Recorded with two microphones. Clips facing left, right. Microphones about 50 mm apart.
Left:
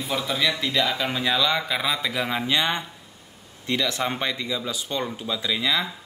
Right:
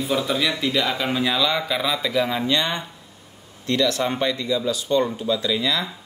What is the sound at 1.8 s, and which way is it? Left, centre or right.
Speech, centre.